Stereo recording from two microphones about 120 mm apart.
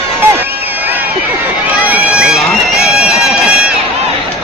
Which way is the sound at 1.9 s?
5° right (ahead or behind).